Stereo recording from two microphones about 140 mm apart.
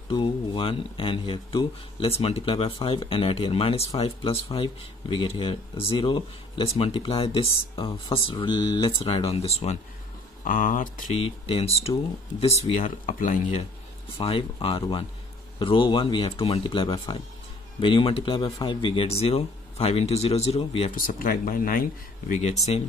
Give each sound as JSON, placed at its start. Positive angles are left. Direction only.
{"t": 0.1, "sound": "speech", "side_deg": 40}
{"t": 9.0, "sound": "speech", "side_deg": 45}
{"t": 10.4, "sound": "speech", "side_deg": 70}
{"t": 11.1, "sound": "speech", "side_deg": 40}
{"t": 13.0, "sound": "speech", "side_deg": 70}
{"t": 14.2, "sound": "speech", "side_deg": 40}
{"t": 20.9, "sound": "speech", "side_deg": 85}
{"t": 22.3, "sound": "speech", "side_deg": 55}